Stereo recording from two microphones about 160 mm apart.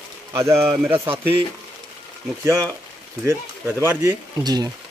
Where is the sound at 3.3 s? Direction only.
15° right (ahead or behind).